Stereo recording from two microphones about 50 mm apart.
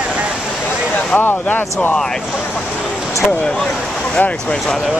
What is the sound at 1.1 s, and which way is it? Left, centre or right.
Speech, left.